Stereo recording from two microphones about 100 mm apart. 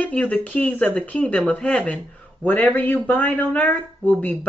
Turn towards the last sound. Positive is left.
turn(degrees=15)  # may be behind; listen again after turning